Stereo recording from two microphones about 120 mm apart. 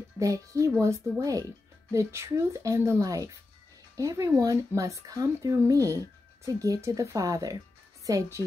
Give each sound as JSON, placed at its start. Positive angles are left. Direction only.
{"t": 0.2, "sound": "speech", "side_deg": -30}